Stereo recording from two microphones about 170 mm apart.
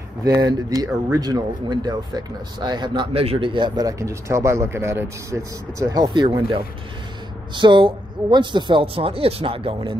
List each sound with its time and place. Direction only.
0.2 s speech: 20° right (ahead or behind)